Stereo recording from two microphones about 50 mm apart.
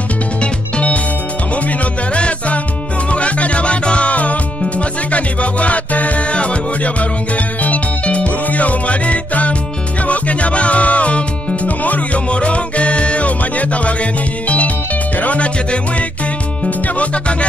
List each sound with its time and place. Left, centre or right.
0.4 s music: left
2.1 s music: left
15.1 s music: left